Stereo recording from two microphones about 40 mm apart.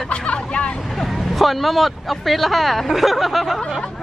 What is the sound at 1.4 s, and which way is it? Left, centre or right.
Speech, centre.